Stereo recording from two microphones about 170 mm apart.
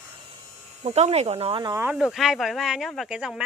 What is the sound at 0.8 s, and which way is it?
Speech, 40° right (ahead or behind).